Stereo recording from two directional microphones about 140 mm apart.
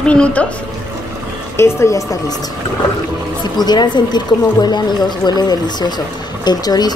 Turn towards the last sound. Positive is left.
turn(degrees=30)  # may be behind; listen again after turning